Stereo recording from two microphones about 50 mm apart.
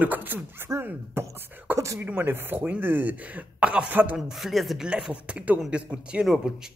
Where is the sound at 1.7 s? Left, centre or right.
Right.